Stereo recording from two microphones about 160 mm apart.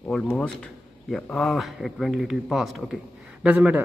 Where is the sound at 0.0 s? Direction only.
5° left (ahead or behind).